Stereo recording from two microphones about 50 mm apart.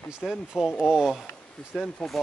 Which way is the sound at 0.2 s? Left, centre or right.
Centre.